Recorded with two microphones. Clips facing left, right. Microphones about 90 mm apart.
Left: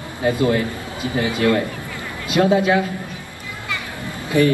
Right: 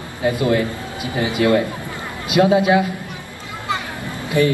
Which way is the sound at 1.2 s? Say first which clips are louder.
Right 2 dB; 20° right (ahead or behind).